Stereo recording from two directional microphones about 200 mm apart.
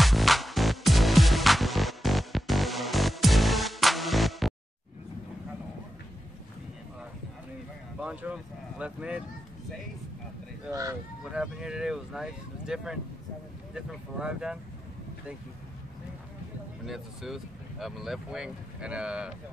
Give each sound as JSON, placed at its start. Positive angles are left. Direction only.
{"t": 0.0, "sound": "music", "side_deg": 0}
{"t": 8.0, "sound": "speech", "side_deg": -5}
{"t": 10.7, "sound": "speech", "side_deg": -15}
{"t": 11.3, "sound": "speech", "side_deg": -5}
{"t": 16.8, "sound": "speech", "side_deg": 0}